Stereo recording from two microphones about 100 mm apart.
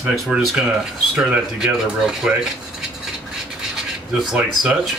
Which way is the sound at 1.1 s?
5° right (ahead or behind).